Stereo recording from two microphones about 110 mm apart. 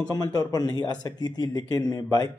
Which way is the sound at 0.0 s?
35° left (ahead or behind).